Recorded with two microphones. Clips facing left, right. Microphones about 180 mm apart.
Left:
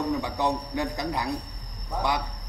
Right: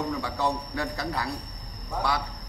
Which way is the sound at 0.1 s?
20° left (ahead or behind).